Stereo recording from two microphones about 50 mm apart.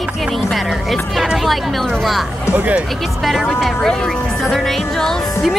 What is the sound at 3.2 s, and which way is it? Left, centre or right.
Speech, centre.